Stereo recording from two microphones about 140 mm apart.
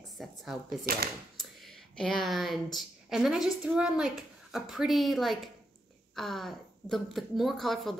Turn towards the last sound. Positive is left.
turn(degrees=0)  # may be behind; listen again after turning